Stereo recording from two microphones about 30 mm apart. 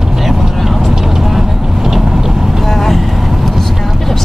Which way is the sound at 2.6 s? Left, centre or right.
Centre.